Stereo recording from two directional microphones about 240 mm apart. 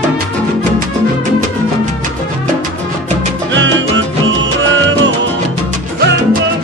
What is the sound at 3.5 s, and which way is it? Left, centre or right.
Music, right.